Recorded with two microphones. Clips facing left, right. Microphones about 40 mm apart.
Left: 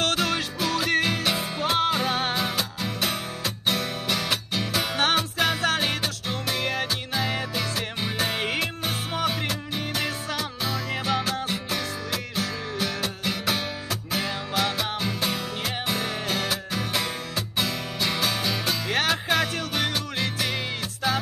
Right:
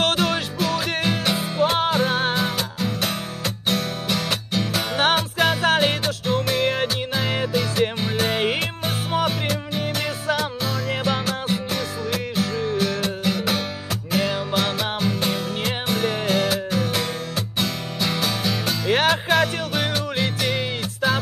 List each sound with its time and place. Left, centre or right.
0.0 s music: centre
4.9 s music: centre
8.0 s music: centre
8.4 s music: centre
10.6 s music: centre
18.9 s music: centre
19.2 s music: centre